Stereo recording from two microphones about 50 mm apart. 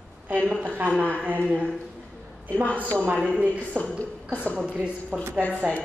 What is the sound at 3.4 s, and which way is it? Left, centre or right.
Speech, right.